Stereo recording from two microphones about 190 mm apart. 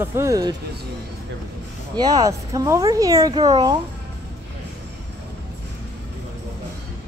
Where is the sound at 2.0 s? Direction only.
20° right (ahead or behind).